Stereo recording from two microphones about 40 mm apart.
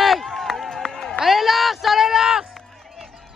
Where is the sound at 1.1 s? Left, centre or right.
Centre.